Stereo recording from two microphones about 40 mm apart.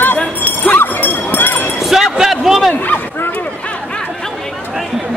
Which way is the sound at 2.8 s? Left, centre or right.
Left.